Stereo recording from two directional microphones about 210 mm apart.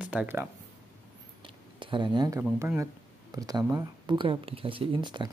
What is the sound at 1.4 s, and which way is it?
Speech, 25° right (ahead or behind).